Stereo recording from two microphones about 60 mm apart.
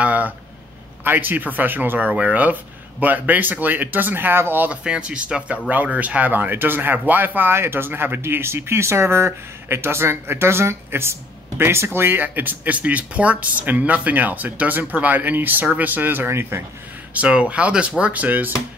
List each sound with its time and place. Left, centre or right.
0.0 s a sound: right
1.0 s speech: right
4.6 s speech: centre; by 16.6 s right
17.1 s speech: right